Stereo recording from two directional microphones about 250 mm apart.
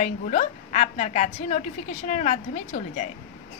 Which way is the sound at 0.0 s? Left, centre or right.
Left.